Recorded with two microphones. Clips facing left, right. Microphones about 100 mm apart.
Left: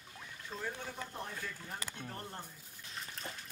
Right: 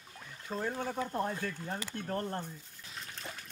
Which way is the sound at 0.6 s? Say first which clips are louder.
Right 8 dB; 55° right (ahead or behind).